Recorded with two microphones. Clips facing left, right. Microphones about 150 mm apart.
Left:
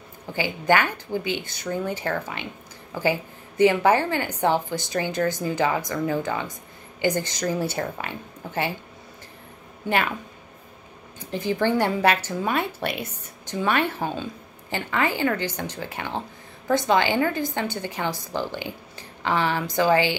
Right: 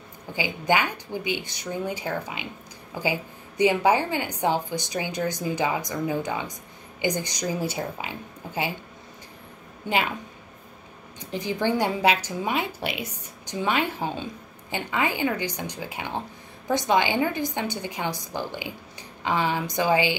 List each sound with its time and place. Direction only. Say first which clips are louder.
0.3 s a woman's voice: left 3 dB; 15° right (ahead or behind)
11.1 s a woman's voice: left 3 dB; 15° right (ahead or behind)